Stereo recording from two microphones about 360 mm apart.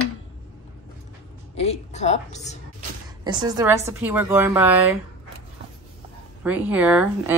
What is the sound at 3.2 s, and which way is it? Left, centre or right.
A woman's voice, centre.